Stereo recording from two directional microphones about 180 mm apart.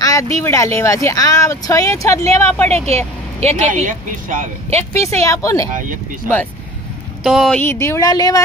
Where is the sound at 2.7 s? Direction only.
35° right (ahead or behind).